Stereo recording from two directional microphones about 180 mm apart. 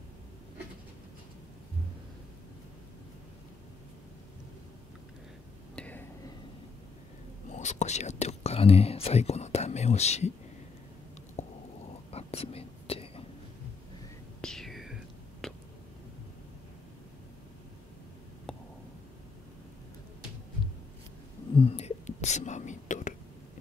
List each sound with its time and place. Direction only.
5.8 s a sound: 10° left (ahead or behind)
7.4 s whispering: 40° left (ahead or behind)
11.4 s stomach rumble: 35° left (ahead or behind)
12.1 s whispering: 35° left (ahead or behind)
14.4 s whispering: centre (ahead or behind)
15.4 s a sound: centre (ahead or behind)
21.5 s whispering: 35° left (ahead or behind)